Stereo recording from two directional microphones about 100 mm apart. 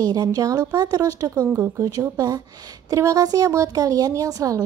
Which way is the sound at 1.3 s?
20° right (ahead or behind).